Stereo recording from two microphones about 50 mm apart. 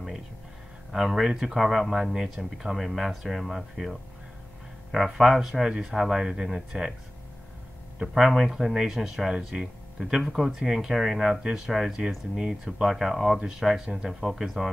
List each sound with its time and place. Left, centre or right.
0.9 s speech: centre
8.0 s speech: centre
14.2 s speech: centre